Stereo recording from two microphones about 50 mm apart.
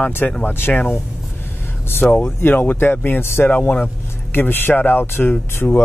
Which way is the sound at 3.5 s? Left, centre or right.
Left.